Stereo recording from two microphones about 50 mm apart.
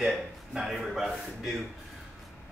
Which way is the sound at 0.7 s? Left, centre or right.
Centre.